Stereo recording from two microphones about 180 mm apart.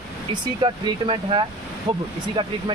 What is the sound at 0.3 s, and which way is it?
Speech, 25° right (ahead or behind).